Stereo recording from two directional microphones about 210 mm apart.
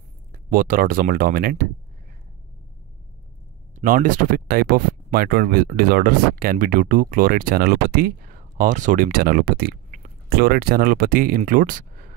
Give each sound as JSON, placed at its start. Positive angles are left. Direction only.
{"t": 0.3, "sound": "speech", "side_deg": -40}
{"t": 3.7, "sound": "speech", "side_deg": -40}